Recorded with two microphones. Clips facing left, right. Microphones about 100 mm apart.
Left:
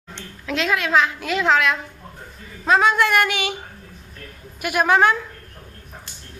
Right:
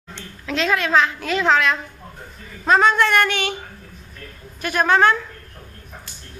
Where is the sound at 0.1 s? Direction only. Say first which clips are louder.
Even; 5° left (ahead or behind).